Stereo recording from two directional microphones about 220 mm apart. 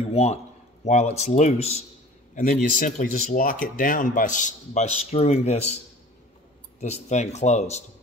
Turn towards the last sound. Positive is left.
turn(degrees=30)  # may be behind; listen again after turning